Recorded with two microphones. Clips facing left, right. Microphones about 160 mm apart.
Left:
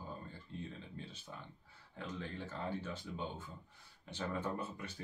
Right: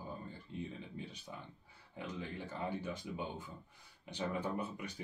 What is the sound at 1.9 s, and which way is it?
Speech, 15° right (ahead or behind).